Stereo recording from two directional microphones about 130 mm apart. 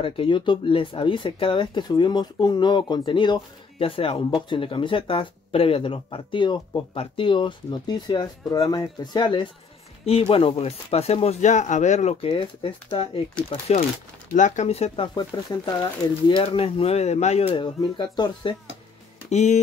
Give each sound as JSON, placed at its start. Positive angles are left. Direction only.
{"t": 0.0, "sound": "speech", "side_deg": 40}
{"t": 3.8, "sound": "speech", "side_deg": 45}
{"t": 13.7, "sound": "speech", "side_deg": 55}
{"t": 14.3, "sound": "speech", "side_deg": 65}
{"t": 15.1, "sound": "speech", "side_deg": 35}
{"t": 19.3, "sound": "speech", "side_deg": 60}